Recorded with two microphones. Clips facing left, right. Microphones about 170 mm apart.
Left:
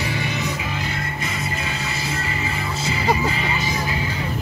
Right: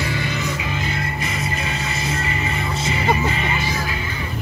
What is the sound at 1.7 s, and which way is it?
Music, 5° left (ahead or behind).